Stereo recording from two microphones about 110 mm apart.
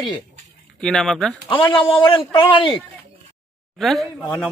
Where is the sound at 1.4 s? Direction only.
50° left (ahead or behind).